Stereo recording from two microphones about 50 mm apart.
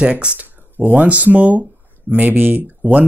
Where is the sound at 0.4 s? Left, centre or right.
Right.